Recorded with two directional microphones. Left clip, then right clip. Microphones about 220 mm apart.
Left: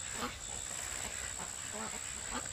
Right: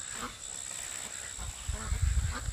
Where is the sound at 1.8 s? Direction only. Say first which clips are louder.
Right 2 dB; 45° left (ahead or behind).